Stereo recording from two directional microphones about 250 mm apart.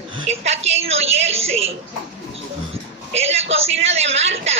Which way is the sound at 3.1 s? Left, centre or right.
Right.